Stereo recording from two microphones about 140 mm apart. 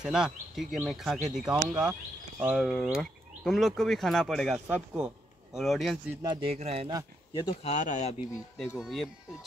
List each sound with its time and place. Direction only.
0.0 s speech: 5° right (ahead or behind)
6.2 s speech: 30° right (ahead or behind)
6.5 s speech: 45° right (ahead or behind)
7.6 s speech: 60° left (ahead or behind)
8.5 s speech: centre (ahead or behind)